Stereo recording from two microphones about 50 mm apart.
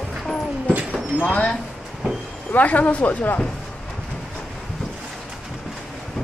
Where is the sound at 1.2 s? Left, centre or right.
Left.